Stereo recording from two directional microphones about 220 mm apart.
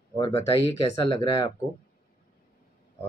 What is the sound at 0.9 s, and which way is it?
Speech, 15° left (ahead or behind).